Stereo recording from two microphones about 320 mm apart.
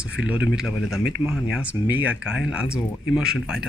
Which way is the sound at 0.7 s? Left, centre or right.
Left.